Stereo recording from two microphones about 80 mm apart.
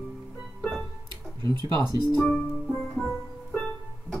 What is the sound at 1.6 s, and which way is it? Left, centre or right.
Speech, right.